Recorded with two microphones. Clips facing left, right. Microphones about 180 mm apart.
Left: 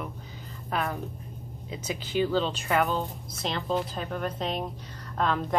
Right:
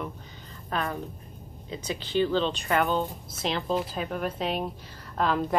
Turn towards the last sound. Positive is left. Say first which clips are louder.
# right 1 dB
turn(degrees=-5)  # may be behind; listen again after turning